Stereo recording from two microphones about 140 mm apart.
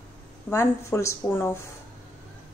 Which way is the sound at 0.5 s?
20° left (ahead or behind).